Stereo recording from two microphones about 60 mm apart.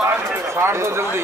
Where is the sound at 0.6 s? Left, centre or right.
Right.